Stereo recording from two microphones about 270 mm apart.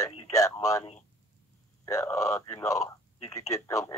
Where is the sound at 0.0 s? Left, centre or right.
Centre.